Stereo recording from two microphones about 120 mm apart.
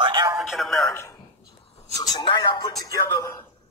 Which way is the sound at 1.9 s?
30° left (ahead or behind).